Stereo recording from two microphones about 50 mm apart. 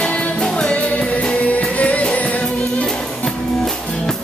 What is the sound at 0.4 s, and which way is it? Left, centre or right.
Music, centre.